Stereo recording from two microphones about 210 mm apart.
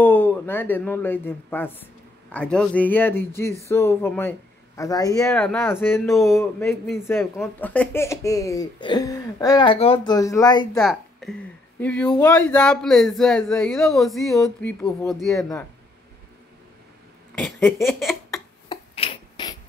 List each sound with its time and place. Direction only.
0.0 s speech: 10° left (ahead or behind)
7.1 s speech: 10° left (ahead or behind)
10.8 s speech: centre (ahead or behind)
15.3 s speech: 15° left (ahead or behind)
17.4 s speech: 5° left (ahead or behind)
18.7 s finger snapping: 25° left (ahead or behind)